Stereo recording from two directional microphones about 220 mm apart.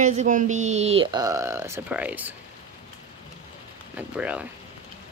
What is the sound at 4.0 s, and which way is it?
Speech, 5° right (ahead or behind).